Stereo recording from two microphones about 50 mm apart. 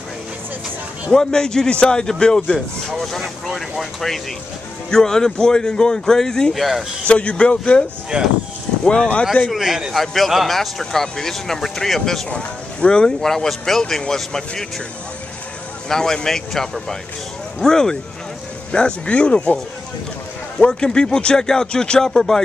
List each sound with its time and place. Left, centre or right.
1.1 s speech: centre
2.9 s speech: centre
6.5 s speech: centre
7.1 s speech: left
8.1 s speech: right
8.8 s speech: centre
9.5 s a man's voice: centre
9.9 s speech: centre
12.3 s speech: centre
15.9 s speech: centre
18.7 s speech: left
20.5 s speech: left
20.9 s speech: centre